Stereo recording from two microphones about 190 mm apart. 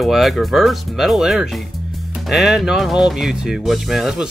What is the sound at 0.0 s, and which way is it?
Speech, centre (ahead or behind).